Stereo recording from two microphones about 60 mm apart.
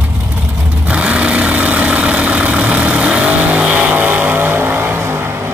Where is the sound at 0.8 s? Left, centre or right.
Right.